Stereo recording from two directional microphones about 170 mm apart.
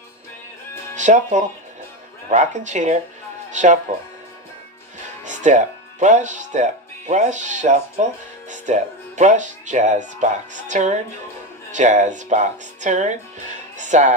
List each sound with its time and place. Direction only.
0.9 s speech: 45° right (ahead or behind)
5.2 s speech: 45° right (ahead or behind)